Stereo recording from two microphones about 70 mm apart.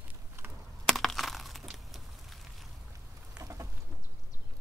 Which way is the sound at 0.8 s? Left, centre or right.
Centre.